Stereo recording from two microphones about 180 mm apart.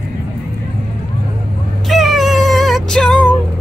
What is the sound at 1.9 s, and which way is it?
Cat, centre (ahead or behind).